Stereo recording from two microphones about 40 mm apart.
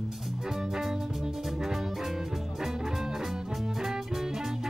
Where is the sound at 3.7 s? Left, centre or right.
Centre.